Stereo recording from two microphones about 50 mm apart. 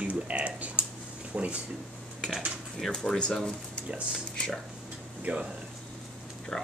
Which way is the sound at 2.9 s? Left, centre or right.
Centre.